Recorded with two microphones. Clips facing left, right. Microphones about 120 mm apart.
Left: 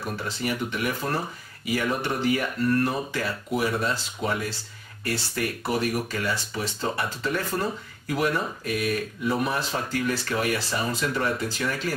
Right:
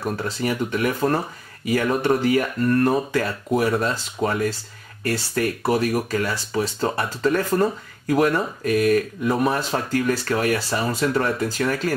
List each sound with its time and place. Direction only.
0.0 s speech: 45° right (ahead or behind)